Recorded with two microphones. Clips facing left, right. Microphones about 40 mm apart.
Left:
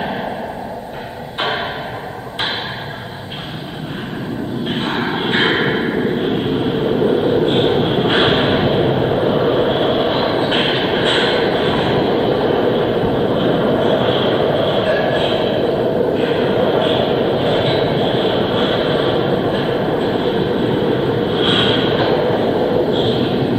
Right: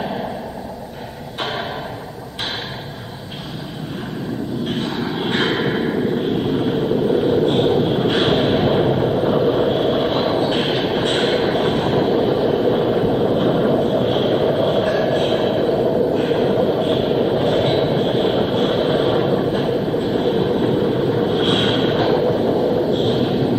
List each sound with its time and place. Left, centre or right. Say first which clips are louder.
4.8 s vehicle: left 3 dB; left
13.7 s train: left 3 dB; left